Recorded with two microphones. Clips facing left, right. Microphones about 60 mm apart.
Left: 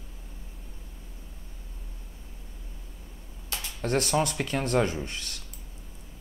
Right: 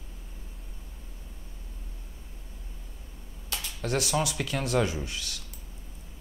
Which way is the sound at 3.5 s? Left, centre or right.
Left.